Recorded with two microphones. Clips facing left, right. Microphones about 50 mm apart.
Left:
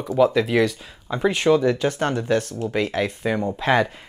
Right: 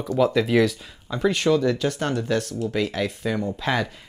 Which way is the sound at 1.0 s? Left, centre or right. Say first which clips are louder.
Left 2 dB; centre.